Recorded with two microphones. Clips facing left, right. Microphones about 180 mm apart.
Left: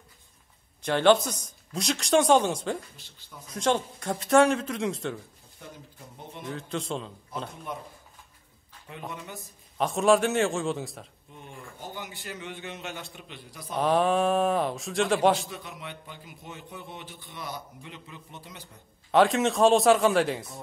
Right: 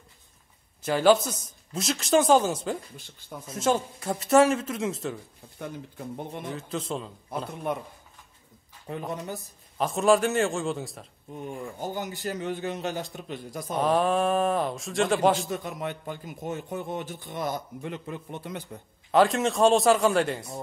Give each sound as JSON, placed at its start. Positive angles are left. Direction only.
{"t": 0.8, "sound": "speech", "side_deg": -5}
{"t": 5.6, "sound": "speech", "side_deg": -55}
{"t": 6.5, "sound": "speech", "side_deg": 0}
{"t": 7.7, "sound": "speech", "side_deg": -60}
{"t": 9.1, "sound": "a man's voice", "side_deg": -35}
{"t": 9.8, "sound": "speech", "side_deg": 0}
{"t": 11.8, "sound": "a man's voice", "side_deg": -45}
{"t": 13.7, "sound": "speech", "side_deg": 0}
{"t": 15.5, "sound": "a man's voice", "side_deg": -45}
{"t": 19.1, "sound": "speech", "side_deg": 0}